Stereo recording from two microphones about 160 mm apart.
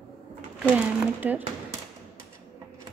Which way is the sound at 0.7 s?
10° right (ahead or behind).